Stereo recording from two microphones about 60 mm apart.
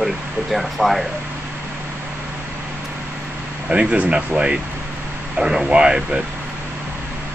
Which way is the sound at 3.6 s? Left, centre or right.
Centre.